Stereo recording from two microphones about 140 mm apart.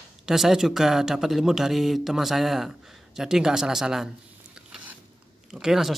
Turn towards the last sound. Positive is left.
turn(degrees=-5)  # may be behind; listen again after turning